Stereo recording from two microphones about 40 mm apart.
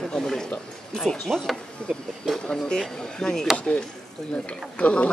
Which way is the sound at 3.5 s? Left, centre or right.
Left.